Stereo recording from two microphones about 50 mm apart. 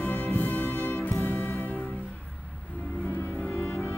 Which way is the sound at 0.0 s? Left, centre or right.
Left.